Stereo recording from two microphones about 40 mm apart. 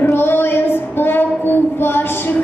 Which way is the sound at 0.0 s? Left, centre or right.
Left.